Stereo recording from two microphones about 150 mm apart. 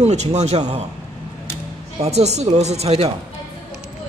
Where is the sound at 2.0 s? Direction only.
45° right (ahead or behind).